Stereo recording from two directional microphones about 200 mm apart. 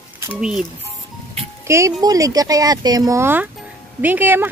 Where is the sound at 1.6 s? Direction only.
15° right (ahead or behind).